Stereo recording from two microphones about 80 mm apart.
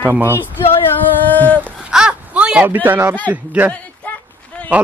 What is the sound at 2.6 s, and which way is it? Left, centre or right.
Speech, right.